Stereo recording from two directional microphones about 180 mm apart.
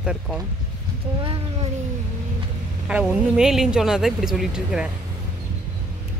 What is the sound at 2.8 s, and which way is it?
Speech, 5° right (ahead or behind).